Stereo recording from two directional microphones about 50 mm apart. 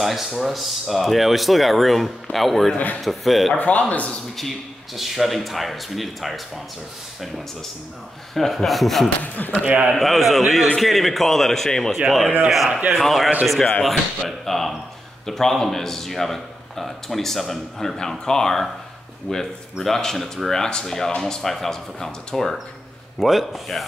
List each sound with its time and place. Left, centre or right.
0.0 s speech: centre
3.5 s speech: left
4.4 s speech: centre
8.4 s speech: centre
9.4 s speech: left
9.8 s speech: centre
12.4 s a man's voice: centre
23.1 s speech: centre